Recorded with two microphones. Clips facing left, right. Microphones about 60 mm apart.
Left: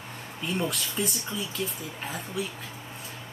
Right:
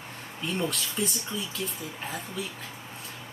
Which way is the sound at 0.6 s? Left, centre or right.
Centre.